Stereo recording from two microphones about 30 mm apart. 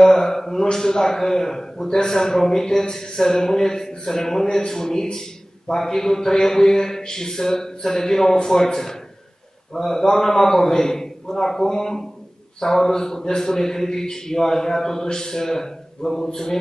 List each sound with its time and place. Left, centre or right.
0.0 s a man's voice: centre